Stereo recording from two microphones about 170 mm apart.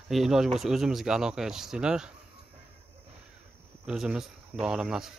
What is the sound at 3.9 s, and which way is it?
Speech, 5° right (ahead or behind).